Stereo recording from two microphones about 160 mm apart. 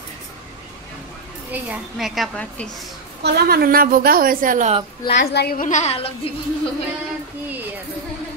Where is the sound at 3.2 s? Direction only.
85° right; by 4.7 s 55° right (ahead or behind).